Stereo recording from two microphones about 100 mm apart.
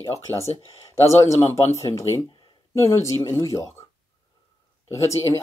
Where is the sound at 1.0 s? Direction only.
30° left (ahead or behind).